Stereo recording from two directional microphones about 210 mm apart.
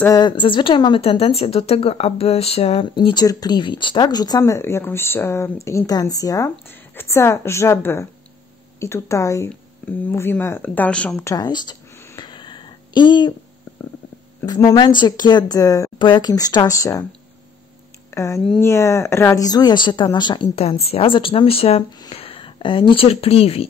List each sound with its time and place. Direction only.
0.0 s a woman's voice: 20° left (ahead or behind)
11.3 s a woman's voice: 20° left (ahead or behind)
12.2 s a sound: 20° left (ahead or behind)
14.4 s a woman's voice: 15° left (ahead or behind)
18.1 s a woman's voice: 15° left (ahead or behind)